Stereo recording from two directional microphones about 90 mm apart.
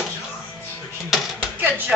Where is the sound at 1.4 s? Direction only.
20° right (ahead or behind).